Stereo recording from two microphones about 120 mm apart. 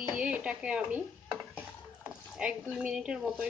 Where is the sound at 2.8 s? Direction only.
10° right (ahead or behind).